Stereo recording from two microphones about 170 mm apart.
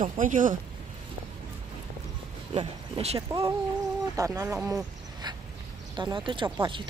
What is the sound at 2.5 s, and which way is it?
Speech, 35° right (ahead or behind).